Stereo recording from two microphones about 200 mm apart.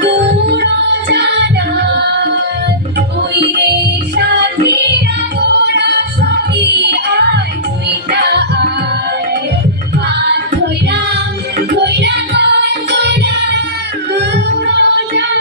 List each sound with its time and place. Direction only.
0.3 s music: 55° right (ahead or behind)
4.2 s music: 60° right (ahead or behind)
11.7 s music: 60° right (ahead or behind)